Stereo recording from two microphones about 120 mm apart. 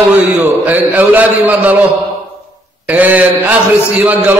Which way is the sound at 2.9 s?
15° right (ahead or behind).